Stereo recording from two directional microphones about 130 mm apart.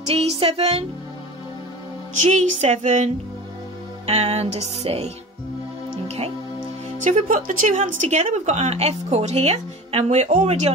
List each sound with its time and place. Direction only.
0.0 s music: 50° right (ahead or behind)
2.2 s speech: 60° right (ahead or behind)
4.0 s music: 55° right (ahead or behind)
7.0 s speech: 75° right (ahead or behind); by 10.7 s 55° right (ahead or behind)